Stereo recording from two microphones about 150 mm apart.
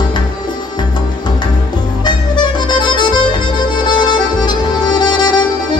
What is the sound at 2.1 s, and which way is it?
Music, 30° left (ahead or behind).